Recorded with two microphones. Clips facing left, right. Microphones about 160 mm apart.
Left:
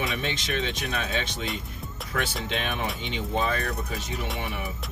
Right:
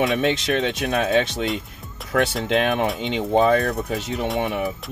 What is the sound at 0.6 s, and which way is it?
Speech, 45° right (ahead or behind).